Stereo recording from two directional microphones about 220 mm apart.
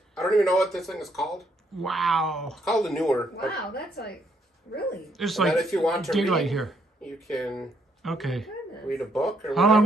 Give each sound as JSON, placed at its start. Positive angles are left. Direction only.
{"t": 0.1, "sound": "speech", "side_deg": 0}
{"t": 3.5, "sound": "speech", "side_deg": 45}
{"t": 5.1, "sound": "speech", "side_deg": 0}